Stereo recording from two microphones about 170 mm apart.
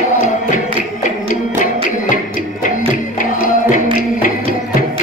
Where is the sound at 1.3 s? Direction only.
50° left (ahead or behind).